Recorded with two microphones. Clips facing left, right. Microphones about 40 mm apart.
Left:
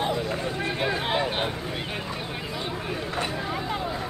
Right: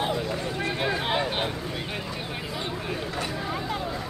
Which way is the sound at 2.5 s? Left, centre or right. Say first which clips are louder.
Even; centre.